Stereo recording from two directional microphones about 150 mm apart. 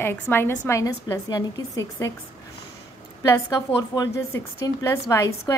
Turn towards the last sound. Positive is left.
turn(degrees=20)  # may be behind; listen again after turning